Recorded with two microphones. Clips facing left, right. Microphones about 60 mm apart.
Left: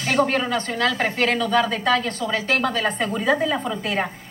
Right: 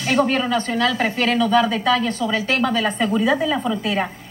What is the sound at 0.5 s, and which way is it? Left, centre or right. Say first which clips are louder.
A woman's voice: right 2 dB; left.